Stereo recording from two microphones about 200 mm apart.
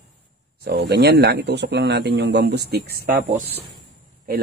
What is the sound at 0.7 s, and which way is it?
Speech, 55° right (ahead or behind).